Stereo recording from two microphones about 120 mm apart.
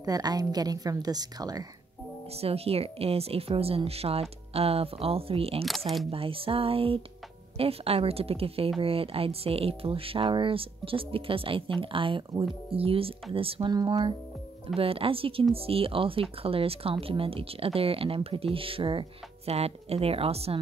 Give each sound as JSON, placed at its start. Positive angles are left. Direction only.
{"t": 0.0, "sound": "a woman's voice", "side_deg": -35}
{"t": 2.4, "sound": "speech", "side_deg": -55}
{"t": 13.7, "sound": "a woman's voice", "side_deg": -35}
{"t": 14.8, "sound": "speech", "side_deg": -50}